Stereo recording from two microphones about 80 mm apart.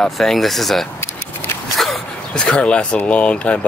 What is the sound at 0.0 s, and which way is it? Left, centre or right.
Speech, centre.